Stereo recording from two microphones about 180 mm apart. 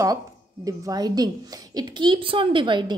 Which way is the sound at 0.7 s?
20° right (ahead or behind).